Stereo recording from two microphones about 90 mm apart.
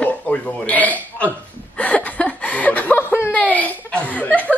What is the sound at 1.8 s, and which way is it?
Chuckle, 15° left (ahead or behind).